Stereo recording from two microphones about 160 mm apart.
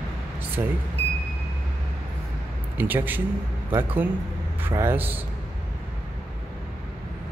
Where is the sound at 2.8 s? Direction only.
10° right (ahead or behind).